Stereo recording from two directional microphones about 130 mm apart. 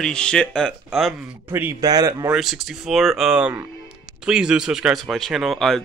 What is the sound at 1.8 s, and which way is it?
Speech, 30° right (ahead or behind).